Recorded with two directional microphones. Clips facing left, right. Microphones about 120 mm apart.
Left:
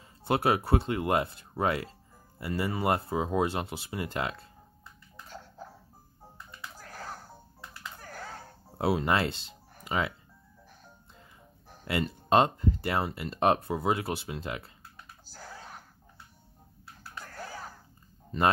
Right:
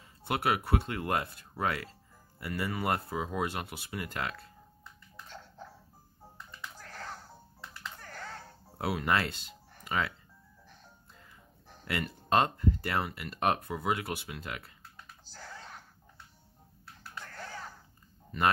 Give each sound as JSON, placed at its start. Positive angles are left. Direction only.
{"t": 0.2, "sound": "speech", "side_deg": 30}
{"t": 6.8, "sound": "music", "side_deg": 10}
{"t": 8.7, "sound": "speech", "side_deg": 25}
{"t": 11.8, "sound": "speech", "side_deg": 25}
{"t": 15.2, "sound": "a sound", "side_deg": 5}
{"t": 17.2, "sound": "finger snapping", "side_deg": 10}
{"t": 18.3, "sound": "speech", "side_deg": 30}